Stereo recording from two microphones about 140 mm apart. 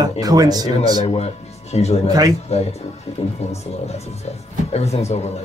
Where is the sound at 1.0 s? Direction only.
50° left (ahead or behind).